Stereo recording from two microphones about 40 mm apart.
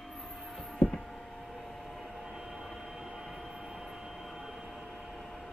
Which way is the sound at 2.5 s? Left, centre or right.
Centre.